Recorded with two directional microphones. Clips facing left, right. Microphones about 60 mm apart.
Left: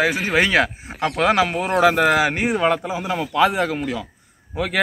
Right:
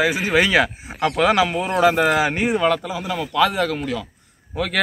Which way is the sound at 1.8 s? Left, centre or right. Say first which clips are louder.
Left 1 dB; left.